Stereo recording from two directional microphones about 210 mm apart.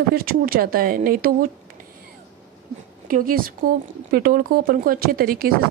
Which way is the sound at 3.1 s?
40° right (ahead or behind).